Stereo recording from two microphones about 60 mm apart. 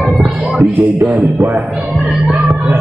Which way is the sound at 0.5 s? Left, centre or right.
Right.